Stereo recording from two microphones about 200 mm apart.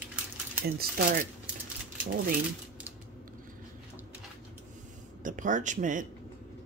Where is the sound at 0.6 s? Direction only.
45° right (ahead or behind).